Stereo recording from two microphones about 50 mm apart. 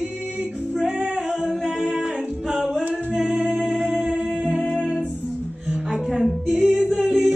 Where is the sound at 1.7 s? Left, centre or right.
Centre.